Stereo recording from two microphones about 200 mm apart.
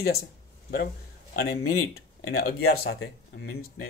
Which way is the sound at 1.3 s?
50° left (ahead or behind).